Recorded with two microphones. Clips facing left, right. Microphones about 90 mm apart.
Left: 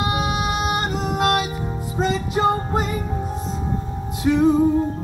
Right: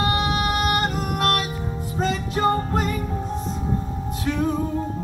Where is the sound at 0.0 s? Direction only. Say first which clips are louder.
Even; 15° left (ahead or behind).